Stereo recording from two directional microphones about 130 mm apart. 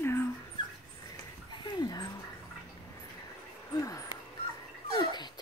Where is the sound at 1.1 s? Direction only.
35° left (ahead or behind).